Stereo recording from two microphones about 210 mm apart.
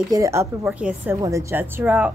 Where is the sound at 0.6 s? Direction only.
5° right (ahead or behind).